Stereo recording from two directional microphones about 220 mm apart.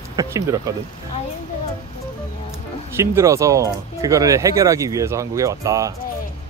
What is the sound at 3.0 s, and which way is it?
Speech, 10° right (ahead or behind).